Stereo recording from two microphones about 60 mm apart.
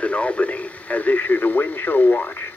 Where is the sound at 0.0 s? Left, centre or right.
Left.